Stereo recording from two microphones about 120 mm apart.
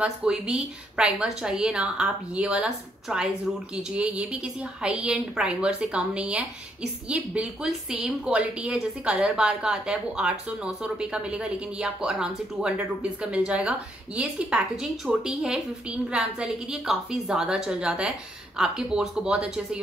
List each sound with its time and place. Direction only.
0.0 s a woman's voice: 10° right (ahead or behind)